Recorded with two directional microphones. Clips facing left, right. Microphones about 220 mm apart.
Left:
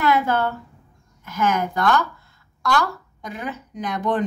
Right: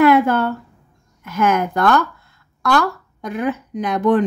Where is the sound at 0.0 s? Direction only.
60° right (ahead or behind).